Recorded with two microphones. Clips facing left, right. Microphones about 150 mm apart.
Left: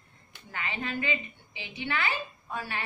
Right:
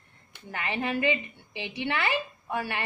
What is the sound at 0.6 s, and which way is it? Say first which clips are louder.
A woman's voice: right 6 dB; 65° right (ahead or behind).